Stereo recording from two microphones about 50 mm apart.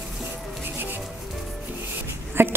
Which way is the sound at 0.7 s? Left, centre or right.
Right.